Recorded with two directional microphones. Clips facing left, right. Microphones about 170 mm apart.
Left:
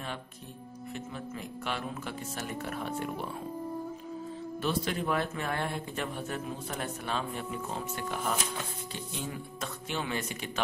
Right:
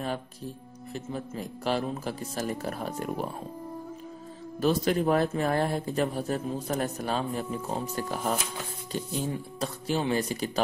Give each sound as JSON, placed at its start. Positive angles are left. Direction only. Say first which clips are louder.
{"t": 0.9, "sound": "speech", "louder": "right 6 dB", "side_deg": -35}
{"t": 4.6, "sound": "speech", "louder": "right 7 dB", "side_deg": -40}